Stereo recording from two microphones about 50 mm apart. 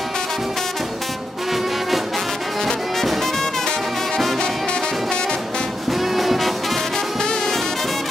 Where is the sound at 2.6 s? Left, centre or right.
Centre.